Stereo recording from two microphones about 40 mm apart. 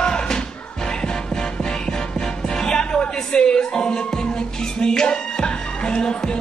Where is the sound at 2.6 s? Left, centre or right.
Centre.